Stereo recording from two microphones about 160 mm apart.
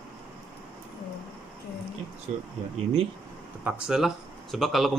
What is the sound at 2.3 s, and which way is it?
Speech, 50° right (ahead or behind).